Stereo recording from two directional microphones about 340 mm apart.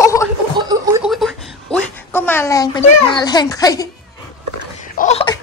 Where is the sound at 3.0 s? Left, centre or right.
Centre.